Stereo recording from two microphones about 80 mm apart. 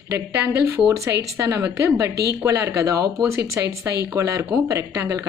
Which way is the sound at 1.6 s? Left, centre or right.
Right.